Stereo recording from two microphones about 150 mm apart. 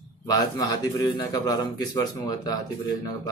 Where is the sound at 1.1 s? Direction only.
25° left (ahead or behind).